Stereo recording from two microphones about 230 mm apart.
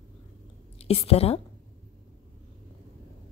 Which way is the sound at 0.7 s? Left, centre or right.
Left.